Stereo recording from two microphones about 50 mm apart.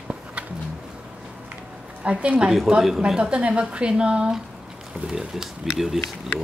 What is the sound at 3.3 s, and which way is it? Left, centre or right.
A woman's voice, right.